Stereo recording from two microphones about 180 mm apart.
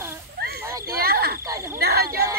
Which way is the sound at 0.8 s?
60° right (ahead or behind).